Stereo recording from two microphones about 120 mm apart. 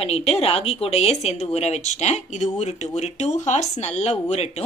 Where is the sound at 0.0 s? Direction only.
55° left (ahead or behind).